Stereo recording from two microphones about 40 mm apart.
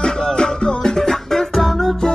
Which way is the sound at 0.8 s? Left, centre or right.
Centre.